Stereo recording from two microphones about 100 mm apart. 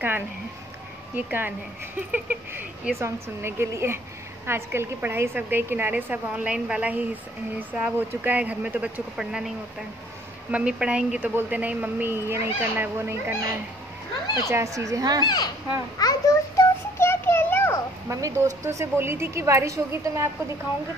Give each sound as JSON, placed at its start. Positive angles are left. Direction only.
{"t": 1.1, "sound": "a woman's voice", "side_deg": -20}
{"t": 10.5, "sound": "a woman's voice", "side_deg": -10}
{"t": 14.5, "sound": "speech", "side_deg": -30}
{"t": 15.2, "sound": "speech", "side_deg": 40}
{"t": 16.0, "sound": "a sound", "side_deg": 35}
{"t": 18.0, "sound": "a woman's voice", "side_deg": -30}